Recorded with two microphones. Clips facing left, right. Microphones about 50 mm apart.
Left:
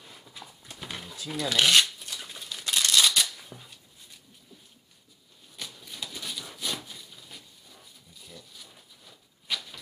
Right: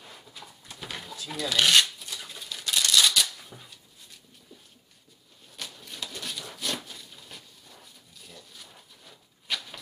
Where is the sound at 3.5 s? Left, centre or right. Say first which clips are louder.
Even; centre.